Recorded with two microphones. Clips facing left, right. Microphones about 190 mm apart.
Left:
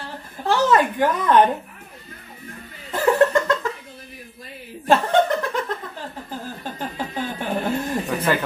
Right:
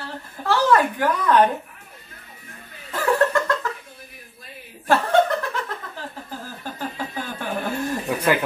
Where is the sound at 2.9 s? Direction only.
20° left (ahead or behind).